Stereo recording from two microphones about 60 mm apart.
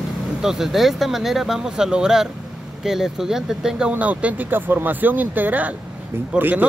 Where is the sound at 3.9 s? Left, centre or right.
Right.